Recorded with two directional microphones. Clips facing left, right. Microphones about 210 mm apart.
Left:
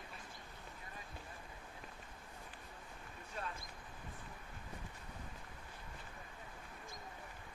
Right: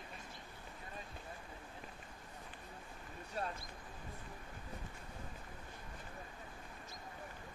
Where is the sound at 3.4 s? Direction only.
35° right (ahead or behind).